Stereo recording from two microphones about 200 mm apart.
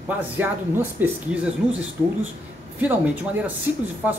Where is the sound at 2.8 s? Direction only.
10° right (ahead or behind).